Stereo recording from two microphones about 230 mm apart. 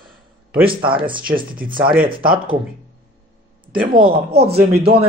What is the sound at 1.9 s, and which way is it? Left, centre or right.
Speech, right.